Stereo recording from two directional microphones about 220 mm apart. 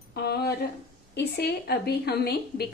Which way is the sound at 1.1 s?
50° left (ahead or behind).